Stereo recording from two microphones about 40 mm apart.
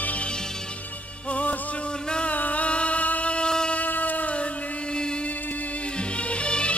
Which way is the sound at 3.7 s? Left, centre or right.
Left.